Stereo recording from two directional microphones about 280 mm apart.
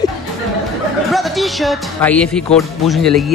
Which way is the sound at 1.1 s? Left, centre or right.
Centre.